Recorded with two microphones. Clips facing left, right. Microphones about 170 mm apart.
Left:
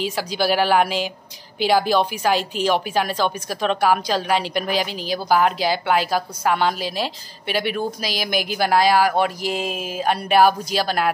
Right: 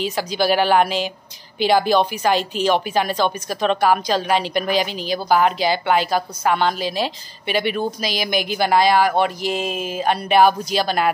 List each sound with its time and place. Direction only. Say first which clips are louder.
0.0 s a woman's voice: right 2 dB; 5° left (ahead or behind)